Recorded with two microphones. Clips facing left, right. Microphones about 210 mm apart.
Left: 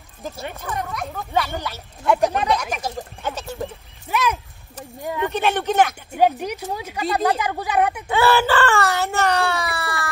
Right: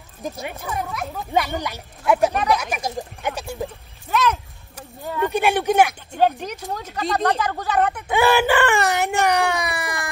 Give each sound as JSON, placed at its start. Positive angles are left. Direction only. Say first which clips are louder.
{"t": 0.2, "sound": "speech", "louder": "right 1 dB", "side_deg": -15}
{"t": 2.0, "sound": "speech", "louder": "even", "side_deg": 0}
{"t": 4.1, "sound": "a sound", "louder": "right 1 dB", "side_deg": 10}
{"t": 5.0, "sound": "speech", "louder": "right 1 dB", "side_deg": 15}
{"t": 5.3, "sound": "speech", "louder": "right 3 dB", "side_deg": -10}
{"t": 6.1, "sound": "speech", "louder": "left 1 dB", "side_deg": 10}
{"t": 8.1, "sound": "speech", "louder": "right 1 dB", "side_deg": -15}